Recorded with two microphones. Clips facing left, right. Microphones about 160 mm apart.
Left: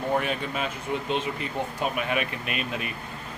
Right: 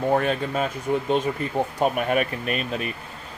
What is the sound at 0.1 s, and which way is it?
Speech, 45° right (ahead or behind).